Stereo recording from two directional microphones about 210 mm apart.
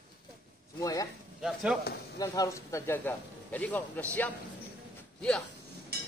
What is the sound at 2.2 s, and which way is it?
Speech, 15° left (ahead or behind).